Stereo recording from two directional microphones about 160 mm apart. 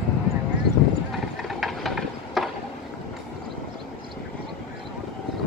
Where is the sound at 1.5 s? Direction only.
Centre (ahead or behind).